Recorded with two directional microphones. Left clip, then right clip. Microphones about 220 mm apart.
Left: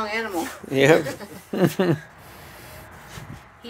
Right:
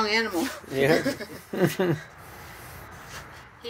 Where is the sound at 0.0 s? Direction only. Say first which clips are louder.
Right 2 dB; 55° right (ahead or behind).